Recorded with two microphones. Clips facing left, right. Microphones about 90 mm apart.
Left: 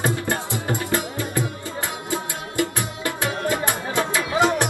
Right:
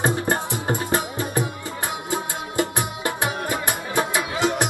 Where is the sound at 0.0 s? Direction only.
25° right (ahead or behind).